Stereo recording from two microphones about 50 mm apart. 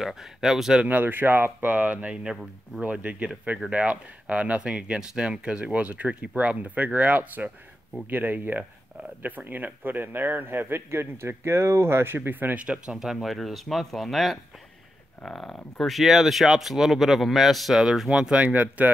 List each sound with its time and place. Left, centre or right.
0.0 s speech: centre
0.8 s speech: right
12.6 s speech: right
18.4 s speech: right